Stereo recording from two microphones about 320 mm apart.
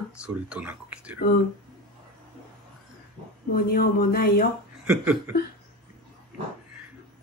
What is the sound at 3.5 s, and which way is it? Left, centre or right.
Speech, left.